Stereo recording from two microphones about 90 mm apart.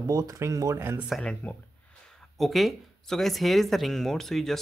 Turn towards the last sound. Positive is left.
turn(degrees=5)  # may be behind; listen again after turning